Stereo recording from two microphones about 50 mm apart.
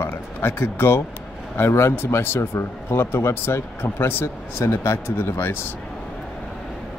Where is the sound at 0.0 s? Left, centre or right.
Left.